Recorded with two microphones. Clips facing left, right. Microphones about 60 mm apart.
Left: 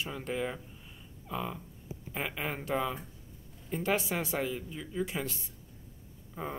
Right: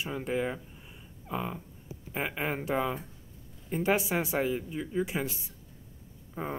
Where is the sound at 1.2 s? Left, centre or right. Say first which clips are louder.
Right 2 dB; centre.